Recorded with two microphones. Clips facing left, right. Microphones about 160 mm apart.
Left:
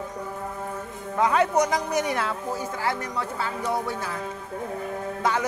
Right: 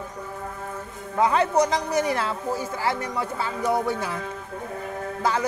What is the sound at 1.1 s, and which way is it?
A man's voice, centre (ahead or behind).